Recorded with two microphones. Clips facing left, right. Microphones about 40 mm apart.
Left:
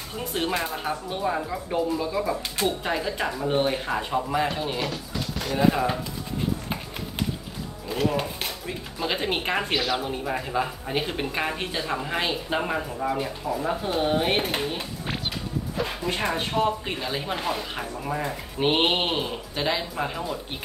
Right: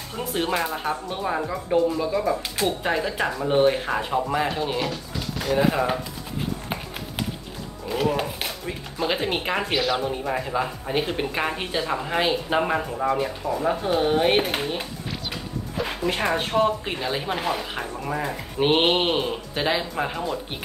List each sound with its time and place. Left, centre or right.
0.3 s speech: centre
7.9 s speech: centre